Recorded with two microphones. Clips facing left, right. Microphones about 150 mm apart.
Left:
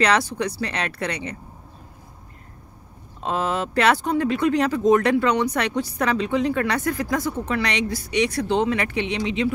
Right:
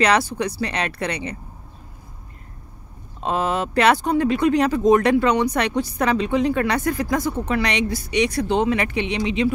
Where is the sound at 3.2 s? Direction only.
15° right (ahead or behind).